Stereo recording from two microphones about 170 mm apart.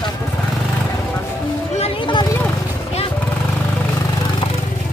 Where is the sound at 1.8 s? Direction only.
30° left (ahead or behind).